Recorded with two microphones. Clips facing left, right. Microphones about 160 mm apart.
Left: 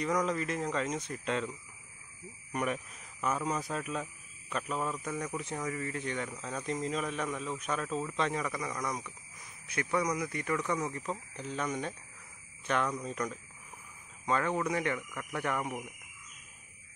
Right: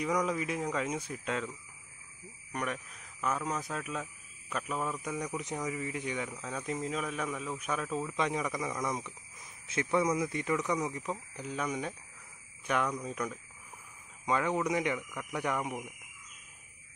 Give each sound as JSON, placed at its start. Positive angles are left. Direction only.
{"t": 0.0, "sound": "speech", "side_deg": -10}
{"t": 2.5, "sound": "a man's voice", "side_deg": 5}
{"t": 5.0, "sound": "speech", "side_deg": -15}